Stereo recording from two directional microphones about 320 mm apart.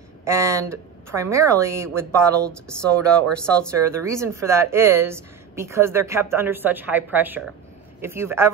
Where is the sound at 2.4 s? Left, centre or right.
Centre.